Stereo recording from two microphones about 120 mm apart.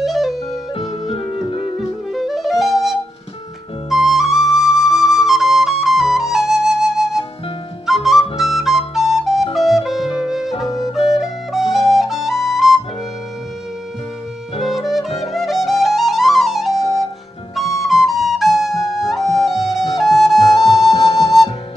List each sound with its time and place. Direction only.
0.0 s music: centre (ahead or behind)
0.5 s music: 55° left (ahead or behind)
1.8 s music: centre (ahead or behind)
3.9 s flute: centre (ahead or behind)
14.6 s music: centre (ahead or behind)
15.0 s music: 60° left (ahead or behind)
15.3 s flute: centre (ahead or behind)
19.0 s music: centre (ahead or behind)
20.2 s flute: centre (ahead or behind)
21.0 s flute: 30° left (ahead or behind)